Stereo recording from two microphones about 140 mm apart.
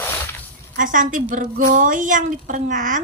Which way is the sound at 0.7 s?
70° right (ahead or behind).